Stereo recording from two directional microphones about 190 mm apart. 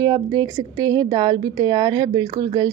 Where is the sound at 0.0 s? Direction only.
20° right (ahead or behind).